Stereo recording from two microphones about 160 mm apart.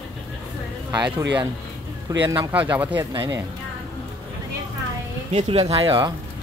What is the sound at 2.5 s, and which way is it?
Speech, 10° right (ahead or behind).